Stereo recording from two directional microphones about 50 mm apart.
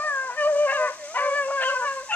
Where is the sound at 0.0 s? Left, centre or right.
Left.